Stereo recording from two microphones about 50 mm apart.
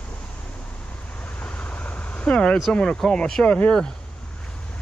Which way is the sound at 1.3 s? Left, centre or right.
Left.